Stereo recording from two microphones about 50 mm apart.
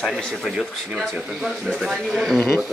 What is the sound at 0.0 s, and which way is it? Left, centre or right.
Speech, centre.